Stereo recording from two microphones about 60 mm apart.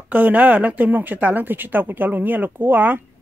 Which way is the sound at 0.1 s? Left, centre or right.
Right.